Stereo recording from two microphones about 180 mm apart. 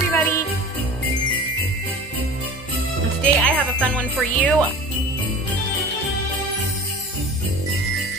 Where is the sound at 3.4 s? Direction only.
5° left (ahead or behind).